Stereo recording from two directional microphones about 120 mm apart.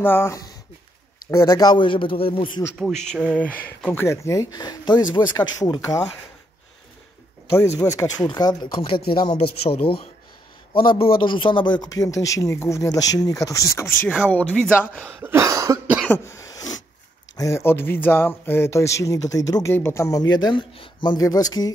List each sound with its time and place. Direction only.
0.0 s a man's voice: 20° left (ahead or behind); by 2.6 s 45° left (ahead or behind)
2.8 s a man's voice: 5° left (ahead or behind); by 6.0 s 30° left (ahead or behind)
7.8 s a man's voice: 30° left (ahead or behind)
9.6 s a man's voice: 55° left (ahead or behind); by 14.1 s 20° left (ahead or behind)
14.2 s speech: 10° left (ahead or behind)
15.2 s cough: 25° right (ahead or behind)
16.1 s cough: 25° left (ahead or behind)
17.4 s a man's voice: 25° left (ahead or behind)